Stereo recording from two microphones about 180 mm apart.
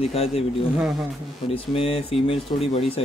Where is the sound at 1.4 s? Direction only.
30° left (ahead or behind).